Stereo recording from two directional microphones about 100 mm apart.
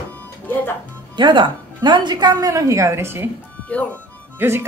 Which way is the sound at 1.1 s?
50° right (ahead or behind).